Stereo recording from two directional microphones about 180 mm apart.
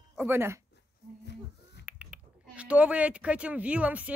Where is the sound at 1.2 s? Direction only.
70° left (ahead or behind).